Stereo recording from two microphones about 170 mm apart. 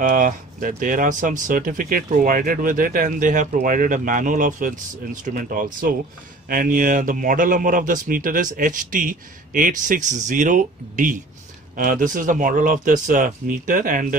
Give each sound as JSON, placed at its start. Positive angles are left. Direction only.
{"t": 0.0, "sound": "speech", "side_deg": -50}